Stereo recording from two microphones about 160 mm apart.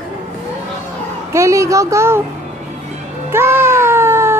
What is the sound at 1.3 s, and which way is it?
Speech, 20° right (ahead or behind).